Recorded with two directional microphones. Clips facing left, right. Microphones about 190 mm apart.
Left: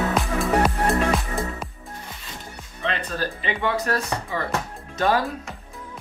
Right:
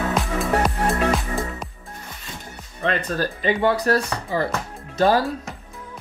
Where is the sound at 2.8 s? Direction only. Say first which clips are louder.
Right 4 dB; 45° right (ahead or behind).